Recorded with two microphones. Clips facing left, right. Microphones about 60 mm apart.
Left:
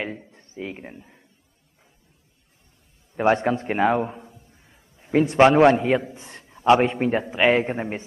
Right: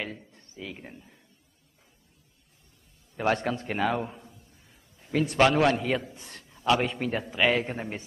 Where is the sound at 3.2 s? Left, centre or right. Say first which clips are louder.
Left 7 dB; left.